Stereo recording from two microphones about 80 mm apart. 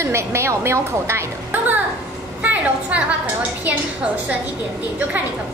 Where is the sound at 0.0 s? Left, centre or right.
Right.